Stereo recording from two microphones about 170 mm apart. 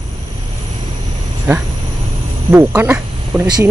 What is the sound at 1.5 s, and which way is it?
Speech, 15° right (ahead or behind).